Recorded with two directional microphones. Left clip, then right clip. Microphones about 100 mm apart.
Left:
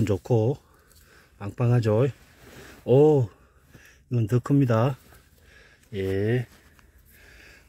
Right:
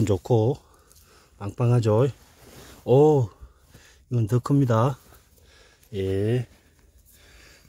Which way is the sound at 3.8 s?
35° right (ahead or behind).